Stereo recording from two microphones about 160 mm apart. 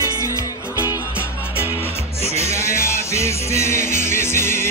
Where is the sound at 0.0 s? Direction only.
25° right (ahead or behind).